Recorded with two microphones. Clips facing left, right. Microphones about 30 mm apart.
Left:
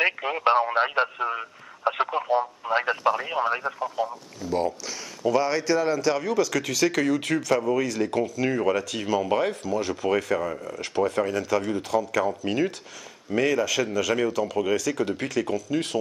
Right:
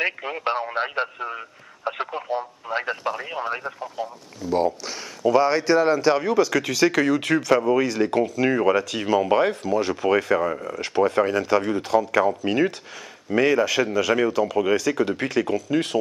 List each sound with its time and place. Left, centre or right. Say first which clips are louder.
0.0 s speech: left 2 dB; centre
4.5 s speech: right 4 dB; centre
8.2 s speech: right 4 dB; centre; by 12.3 s right
12.3 s speech: right 4 dB; centre